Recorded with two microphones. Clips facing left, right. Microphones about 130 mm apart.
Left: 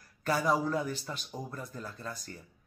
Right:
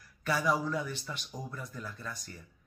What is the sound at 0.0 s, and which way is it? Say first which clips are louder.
Speech: left 1 dB; 40° left (ahead or behind).